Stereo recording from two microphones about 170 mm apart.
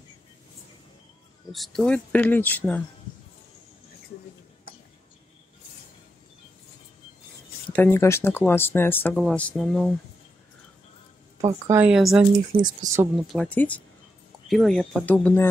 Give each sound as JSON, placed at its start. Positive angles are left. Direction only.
{"t": 1.5, "sound": "speech", "side_deg": 0}
{"t": 7.7, "sound": "speech", "side_deg": 15}
{"t": 11.4, "sound": "speech", "side_deg": -20}
{"t": 11.8, "sound": "speech", "side_deg": -5}
{"t": 12.6, "sound": "speech", "side_deg": -20}
{"t": 13.3, "sound": "speech", "side_deg": 5}